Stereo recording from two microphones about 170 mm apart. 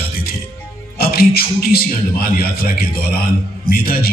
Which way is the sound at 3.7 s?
60° left (ahead or behind).